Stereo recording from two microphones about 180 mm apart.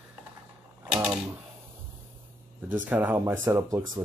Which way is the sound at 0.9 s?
5° right (ahead or behind).